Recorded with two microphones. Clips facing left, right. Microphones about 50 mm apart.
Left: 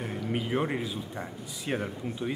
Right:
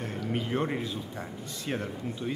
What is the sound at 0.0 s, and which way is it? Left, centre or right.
Speech, centre.